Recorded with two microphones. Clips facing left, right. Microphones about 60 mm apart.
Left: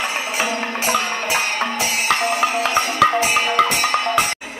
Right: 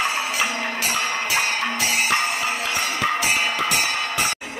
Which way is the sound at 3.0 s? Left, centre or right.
Left.